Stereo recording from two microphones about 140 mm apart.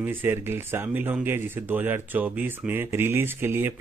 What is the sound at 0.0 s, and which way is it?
Speech, 15° right (ahead or behind).